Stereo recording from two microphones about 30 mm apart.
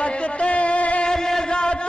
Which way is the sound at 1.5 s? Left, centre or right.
Left.